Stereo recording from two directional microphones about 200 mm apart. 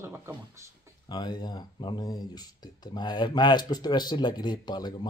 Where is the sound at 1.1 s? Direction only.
20° left (ahead or behind).